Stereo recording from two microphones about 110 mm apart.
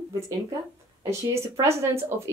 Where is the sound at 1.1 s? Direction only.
25° right (ahead or behind).